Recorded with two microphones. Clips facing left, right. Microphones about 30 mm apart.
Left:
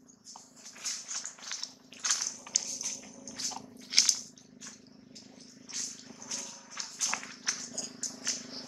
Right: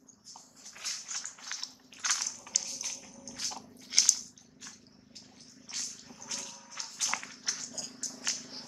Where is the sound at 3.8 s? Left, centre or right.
Left.